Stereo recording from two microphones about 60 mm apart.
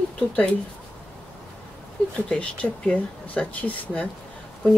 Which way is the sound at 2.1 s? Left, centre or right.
Centre.